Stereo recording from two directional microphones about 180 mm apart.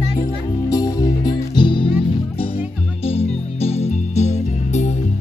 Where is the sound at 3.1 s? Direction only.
35° left (ahead or behind).